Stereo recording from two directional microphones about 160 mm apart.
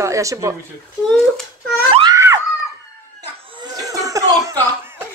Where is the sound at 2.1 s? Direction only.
20° right (ahead or behind).